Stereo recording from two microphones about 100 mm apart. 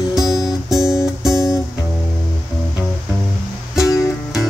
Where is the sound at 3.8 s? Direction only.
30° left (ahead or behind).